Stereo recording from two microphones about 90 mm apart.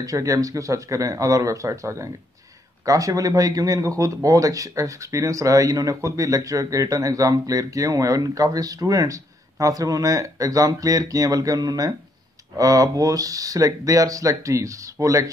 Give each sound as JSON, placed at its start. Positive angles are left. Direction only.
{"t": 0.0, "sound": "speech", "side_deg": -40}